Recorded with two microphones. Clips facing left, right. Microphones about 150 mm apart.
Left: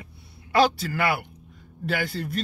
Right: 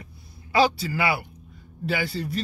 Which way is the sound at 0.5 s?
55° left (ahead or behind).